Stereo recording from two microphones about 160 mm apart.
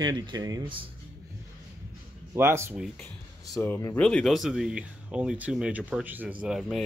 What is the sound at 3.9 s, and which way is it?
Speech, 5° left (ahead or behind).